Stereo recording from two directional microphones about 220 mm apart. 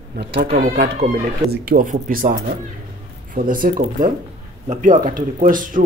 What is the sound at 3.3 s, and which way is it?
Speech, 40° right (ahead or behind).